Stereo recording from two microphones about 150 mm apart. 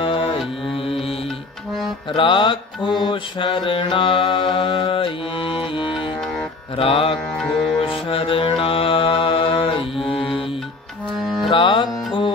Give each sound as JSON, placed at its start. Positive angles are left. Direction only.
{"t": 0.0, "sound": "music", "side_deg": 35}
{"t": 2.1, "sound": "mantra", "side_deg": 30}
{"t": 7.3, "sound": "music", "side_deg": 5}
{"t": 7.8, "sound": "music", "side_deg": 35}
{"t": 11.4, "sound": "music", "side_deg": 30}